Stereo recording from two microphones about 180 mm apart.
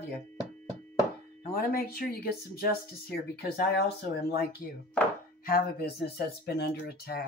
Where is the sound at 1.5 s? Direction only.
55° left (ahead or behind).